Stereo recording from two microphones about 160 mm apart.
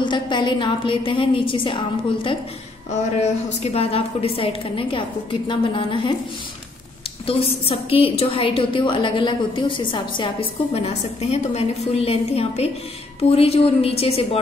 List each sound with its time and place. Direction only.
0.0 s a woman's voice: 30° left (ahead or behind)
2.9 s a woman's voice: 45° left (ahead or behind)
7.2 s a woman's voice: 35° left (ahead or behind)